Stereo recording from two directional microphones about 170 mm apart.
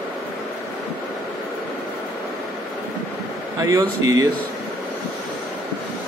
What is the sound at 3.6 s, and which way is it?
Speech, 20° right (ahead or behind).